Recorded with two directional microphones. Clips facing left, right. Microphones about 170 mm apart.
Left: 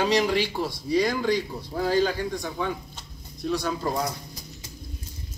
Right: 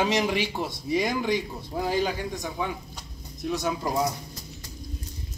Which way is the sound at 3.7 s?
5° right (ahead or behind).